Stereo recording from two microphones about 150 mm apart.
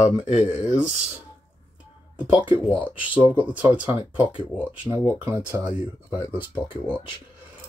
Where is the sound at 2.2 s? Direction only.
10° right (ahead or behind).